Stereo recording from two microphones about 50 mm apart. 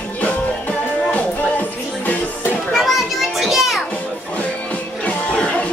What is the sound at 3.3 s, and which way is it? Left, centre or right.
Music, centre.